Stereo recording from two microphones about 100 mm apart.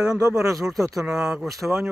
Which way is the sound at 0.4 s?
35° right (ahead or behind).